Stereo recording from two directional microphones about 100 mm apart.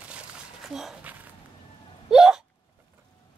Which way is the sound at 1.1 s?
15° right (ahead or behind).